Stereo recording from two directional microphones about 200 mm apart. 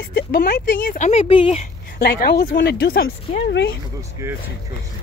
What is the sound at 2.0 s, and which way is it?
A woman's voice, 50° left (ahead or behind).